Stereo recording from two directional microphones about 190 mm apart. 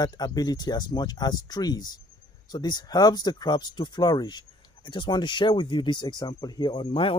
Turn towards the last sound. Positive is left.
turn(degrees=25)  # may be behind; listen again after turning